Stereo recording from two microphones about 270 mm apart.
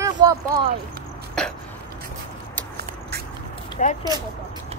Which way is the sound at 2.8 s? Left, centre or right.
Right.